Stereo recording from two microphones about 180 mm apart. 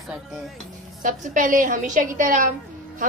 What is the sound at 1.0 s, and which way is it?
A woman's voice, 45° right (ahead or behind).